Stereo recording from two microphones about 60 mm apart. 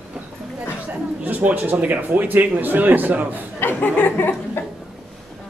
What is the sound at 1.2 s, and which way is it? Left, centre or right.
A man's voice, right.